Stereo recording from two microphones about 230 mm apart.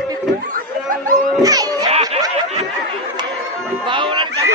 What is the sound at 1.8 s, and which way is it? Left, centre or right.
Snicker, right.